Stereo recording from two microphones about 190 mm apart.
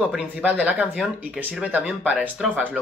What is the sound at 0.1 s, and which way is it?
Speech, 10° right (ahead or behind).